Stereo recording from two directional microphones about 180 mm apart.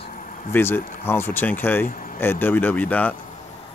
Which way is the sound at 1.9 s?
50° left (ahead or behind).